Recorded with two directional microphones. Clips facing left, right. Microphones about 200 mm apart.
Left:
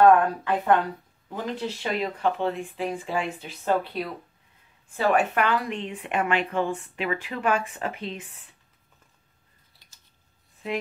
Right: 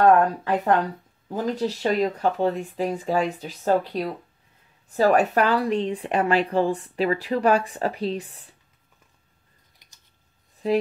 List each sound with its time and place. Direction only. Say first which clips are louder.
0.4 s a woman's voice: right 1 dB; 40° right (ahead or behind)
9.8 s a sound: even; 20° right (ahead or behind)
10.6 s a woman's voice: right 8 dB; 40° right (ahead or behind)